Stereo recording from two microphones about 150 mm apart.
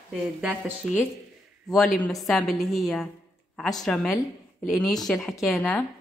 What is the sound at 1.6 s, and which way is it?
A woman's voice, centre (ahead or behind).